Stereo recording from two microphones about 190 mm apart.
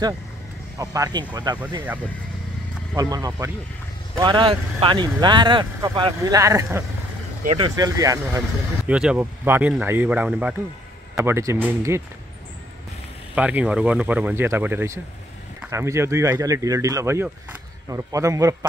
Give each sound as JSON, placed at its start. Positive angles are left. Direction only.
{"t": 0.7, "sound": "speech", "side_deg": -20}
{"t": 3.0, "sound": "speech", "side_deg": -20}
{"t": 13.3, "sound": "speech", "side_deg": -5}